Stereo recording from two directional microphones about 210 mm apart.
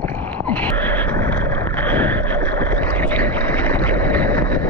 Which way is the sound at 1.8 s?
10° left (ahead or behind).